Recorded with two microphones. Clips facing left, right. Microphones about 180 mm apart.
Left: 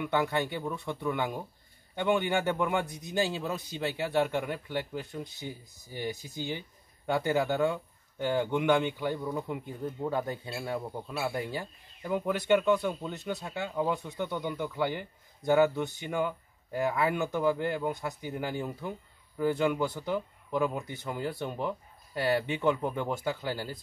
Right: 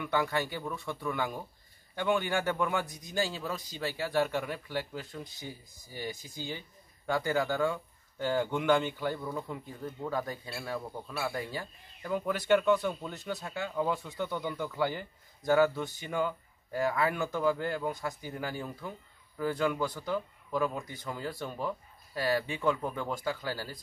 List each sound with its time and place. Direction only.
0.0 s speech: 20° left (ahead or behind)
13.2 s speech: centre (ahead or behind); by 23.8 s 20° left (ahead or behind)